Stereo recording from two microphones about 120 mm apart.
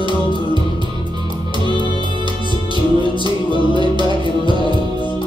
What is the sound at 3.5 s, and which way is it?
Music, 40° right (ahead or behind).